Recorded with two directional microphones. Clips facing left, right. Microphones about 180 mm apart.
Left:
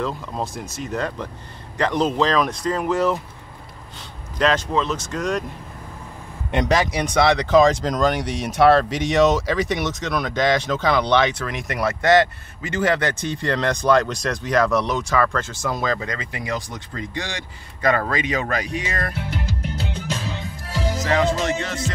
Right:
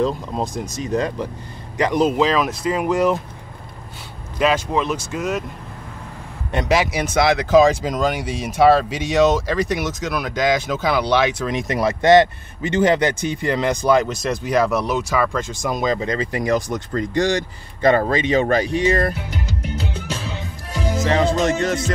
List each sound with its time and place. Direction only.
0.0 s speech: 15° right (ahead or behind)
4.4 s speech: 10° right (ahead or behind)
6.5 s speech: 5° right (ahead or behind)
11.4 s speech: 20° right (ahead or behind)
16.3 s speech: 40° right (ahead or behind)
17.8 s speech: 25° right (ahead or behind)
21.0 s speech: 30° right (ahead or behind)